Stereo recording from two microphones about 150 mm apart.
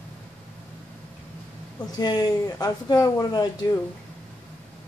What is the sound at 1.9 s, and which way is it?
Speech, 25° left (ahead or behind).